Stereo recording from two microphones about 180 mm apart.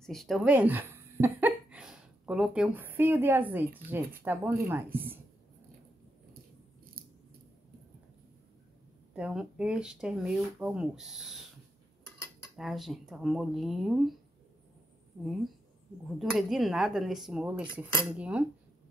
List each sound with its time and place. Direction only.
0.0 s a woman's voice: centre (ahead or behind)
4.9 s a sound: 10° right (ahead or behind)
9.1 s speech: 5° right (ahead or behind)
12.5 s speech: centre (ahead or behind)
16.2 s speech: centre (ahead or behind)